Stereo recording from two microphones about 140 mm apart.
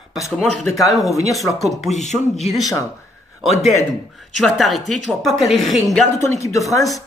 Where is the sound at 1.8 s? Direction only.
55° left (ahead or behind).